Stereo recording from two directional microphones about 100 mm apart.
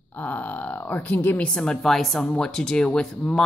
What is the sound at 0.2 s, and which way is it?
Speech, 15° left (ahead or behind).